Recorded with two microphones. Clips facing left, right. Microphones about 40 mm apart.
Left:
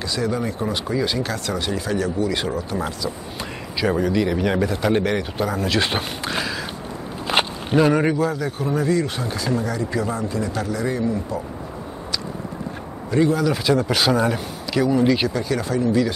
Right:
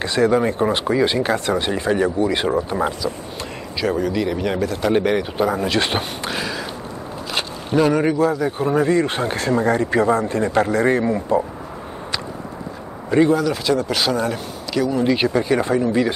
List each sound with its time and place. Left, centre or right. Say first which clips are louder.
0.0 s speech: right 7 dB; right; by 3.1 s centre
3.8 s speech: even; centre
4.9 s speech: right 3 dB; centre
6.3 s a sound: even; centre
7.7 s speech: right 1 dB; centre
8.5 s speech: right 2 dB; right
13.3 s speech: right 1 dB; centre
15.1 s speech: right 4 dB; right